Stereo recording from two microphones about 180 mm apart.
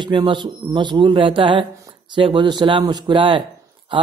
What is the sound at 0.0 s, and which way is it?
Speech, 25° right (ahead or behind).